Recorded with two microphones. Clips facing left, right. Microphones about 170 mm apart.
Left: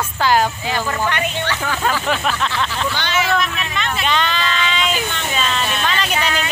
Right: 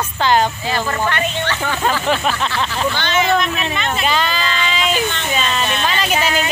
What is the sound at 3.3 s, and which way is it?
Speech, 25° right (ahead or behind).